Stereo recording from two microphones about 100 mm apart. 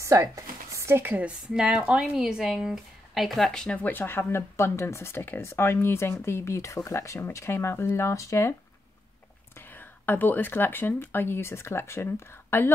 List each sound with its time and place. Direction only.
0.0 s speech: 30° right (ahead or behind); by 8.5 s 30° left (ahead or behind)
9.6 s speech: 20° left (ahead or behind)